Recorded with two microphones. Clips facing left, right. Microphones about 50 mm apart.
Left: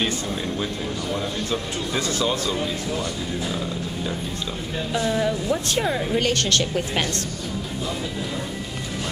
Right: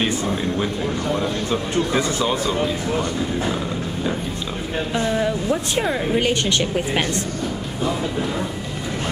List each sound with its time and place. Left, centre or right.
0.0 s speech: right
2.9 s speech: right
5.0 s speech: centre
7.8 s speech: right